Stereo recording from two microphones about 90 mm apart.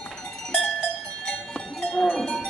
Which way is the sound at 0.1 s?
5° left (ahead or behind).